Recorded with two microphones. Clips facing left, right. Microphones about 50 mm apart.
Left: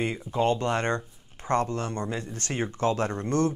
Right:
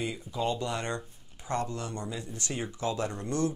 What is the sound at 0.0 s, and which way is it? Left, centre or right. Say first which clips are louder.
Speech: left 6 dB; left.